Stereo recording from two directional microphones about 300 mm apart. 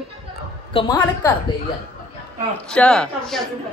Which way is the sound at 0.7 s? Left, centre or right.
Centre.